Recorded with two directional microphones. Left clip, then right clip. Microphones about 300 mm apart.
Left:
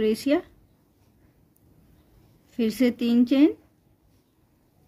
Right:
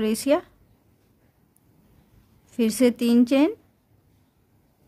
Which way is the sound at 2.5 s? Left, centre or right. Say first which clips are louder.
Right 3 dB; centre.